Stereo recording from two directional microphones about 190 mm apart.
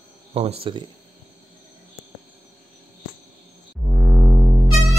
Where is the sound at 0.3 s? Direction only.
30° right (ahead or behind).